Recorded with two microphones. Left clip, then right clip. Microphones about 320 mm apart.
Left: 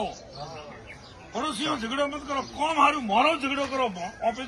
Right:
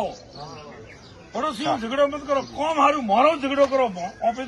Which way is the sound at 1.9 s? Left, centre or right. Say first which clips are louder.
Right 7 dB; centre.